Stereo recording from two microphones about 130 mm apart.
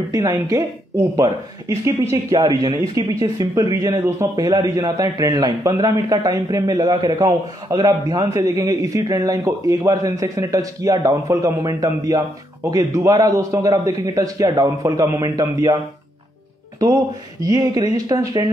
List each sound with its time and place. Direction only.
0.1 s a man's voice: 25° right (ahead or behind)
17.4 s a man's voice: 30° right (ahead or behind)